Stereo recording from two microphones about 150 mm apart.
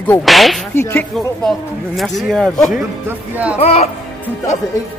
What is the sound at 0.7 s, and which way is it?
Speech, 15° left (ahead or behind).